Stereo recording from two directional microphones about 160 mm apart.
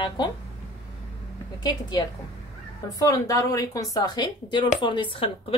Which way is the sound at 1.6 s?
25° left (ahead or behind).